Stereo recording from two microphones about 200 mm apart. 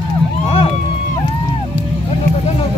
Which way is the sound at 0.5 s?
30° left (ahead or behind).